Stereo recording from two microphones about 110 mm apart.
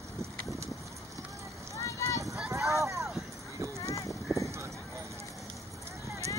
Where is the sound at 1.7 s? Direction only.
30° left (ahead or behind).